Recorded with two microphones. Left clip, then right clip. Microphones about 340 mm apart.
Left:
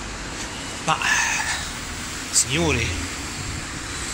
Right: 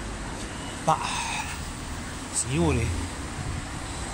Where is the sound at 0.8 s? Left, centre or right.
Centre.